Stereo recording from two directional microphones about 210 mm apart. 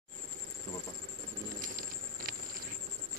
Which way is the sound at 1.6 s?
40° right (ahead or behind).